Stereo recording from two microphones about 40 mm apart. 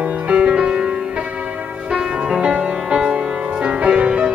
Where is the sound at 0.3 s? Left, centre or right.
Right.